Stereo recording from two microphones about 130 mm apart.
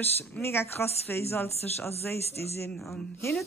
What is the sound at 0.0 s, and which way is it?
Speech, 15° left (ahead or behind).